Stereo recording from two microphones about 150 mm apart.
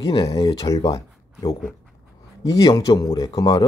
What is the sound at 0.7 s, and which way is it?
Speech, 20° left (ahead or behind).